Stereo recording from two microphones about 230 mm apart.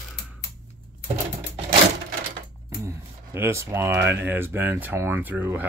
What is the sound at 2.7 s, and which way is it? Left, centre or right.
Speech, centre.